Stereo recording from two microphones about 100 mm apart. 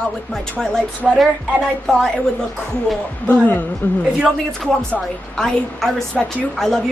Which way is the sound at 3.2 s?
15° left (ahead or behind).